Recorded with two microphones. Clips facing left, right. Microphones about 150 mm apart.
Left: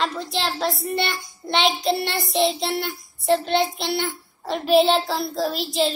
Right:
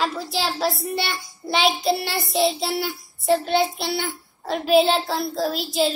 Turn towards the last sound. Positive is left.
turn(degrees=0)  # may be behind; listen again after turning